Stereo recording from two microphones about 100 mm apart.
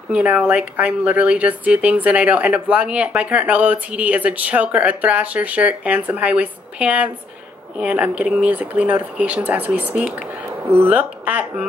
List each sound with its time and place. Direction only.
0.1 s speech: 15° right (ahead or behind)